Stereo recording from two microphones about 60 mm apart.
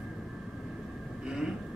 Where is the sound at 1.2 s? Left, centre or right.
Centre.